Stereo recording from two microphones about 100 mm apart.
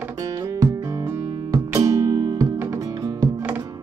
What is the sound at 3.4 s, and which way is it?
Music, 20° right (ahead or behind).